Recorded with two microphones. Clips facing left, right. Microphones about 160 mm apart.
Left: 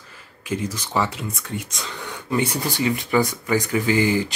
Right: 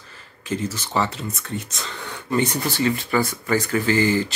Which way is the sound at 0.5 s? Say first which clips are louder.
Even; 10° left (ahead or behind).